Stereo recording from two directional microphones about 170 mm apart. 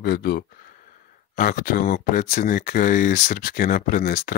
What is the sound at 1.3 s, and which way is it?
Speech, 55° left (ahead or behind).